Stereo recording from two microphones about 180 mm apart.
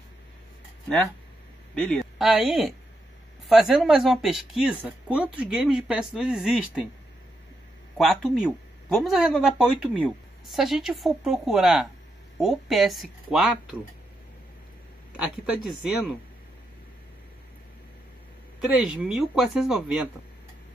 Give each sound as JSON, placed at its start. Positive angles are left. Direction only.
{"t": 1.8, "sound": "a woman's voice", "side_deg": 5}
{"t": 8.0, "sound": "speech", "side_deg": 0}
{"t": 15.1, "sound": "speech", "side_deg": -5}
{"t": 18.7, "sound": "speech", "side_deg": -5}